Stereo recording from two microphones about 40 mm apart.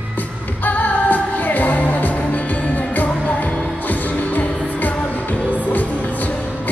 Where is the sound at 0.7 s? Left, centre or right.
Left.